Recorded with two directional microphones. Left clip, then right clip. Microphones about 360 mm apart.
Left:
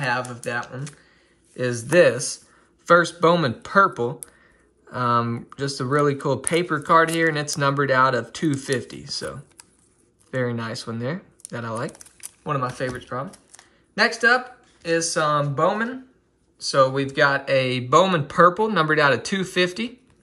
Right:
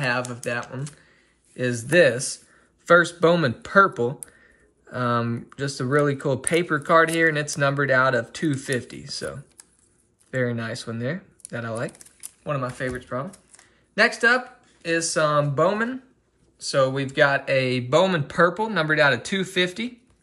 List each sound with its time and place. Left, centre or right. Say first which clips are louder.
0.0 s speech: even; centre